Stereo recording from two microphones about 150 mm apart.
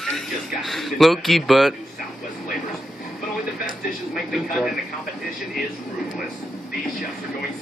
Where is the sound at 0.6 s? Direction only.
Centre (ahead or behind).